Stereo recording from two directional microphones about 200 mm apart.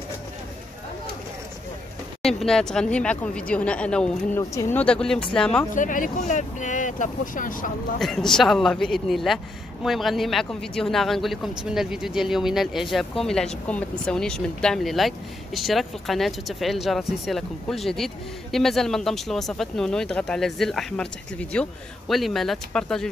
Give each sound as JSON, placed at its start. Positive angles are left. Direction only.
{"t": 2.2, "sound": "speech", "side_deg": 5}
{"t": 5.8, "sound": "speech", "side_deg": 40}
{"t": 8.0, "sound": "speech", "side_deg": 0}